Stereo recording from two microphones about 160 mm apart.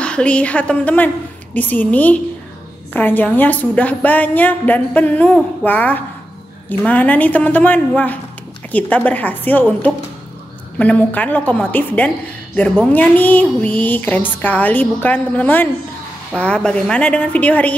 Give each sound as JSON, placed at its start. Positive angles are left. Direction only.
{"t": 0.0, "sound": "a woman's voice", "side_deg": 5}